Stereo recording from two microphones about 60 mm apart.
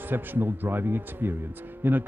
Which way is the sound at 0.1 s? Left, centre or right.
Right.